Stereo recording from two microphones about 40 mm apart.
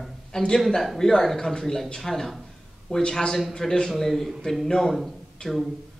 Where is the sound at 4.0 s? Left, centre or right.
Centre.